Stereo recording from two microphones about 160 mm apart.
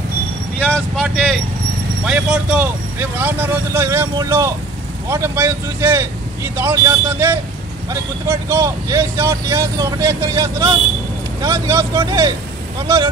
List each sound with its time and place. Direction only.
1.0 s speech: centre (ahead or behind); by 13.1 s 20° right (ahead or behind)